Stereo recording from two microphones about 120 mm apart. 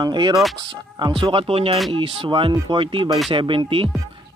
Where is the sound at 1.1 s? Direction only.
50° right (ahead or behind).